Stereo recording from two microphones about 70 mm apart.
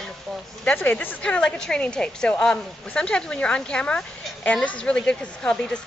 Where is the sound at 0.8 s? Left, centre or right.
Left.